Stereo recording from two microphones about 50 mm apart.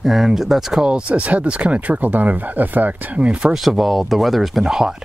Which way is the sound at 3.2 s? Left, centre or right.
Right.